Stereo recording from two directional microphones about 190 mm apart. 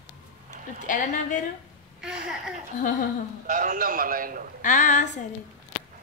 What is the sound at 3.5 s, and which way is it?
Speech, 40° right (ahead or behind).